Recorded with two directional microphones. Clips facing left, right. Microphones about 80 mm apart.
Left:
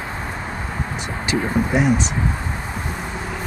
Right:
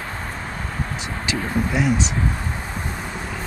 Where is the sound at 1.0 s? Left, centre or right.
Left.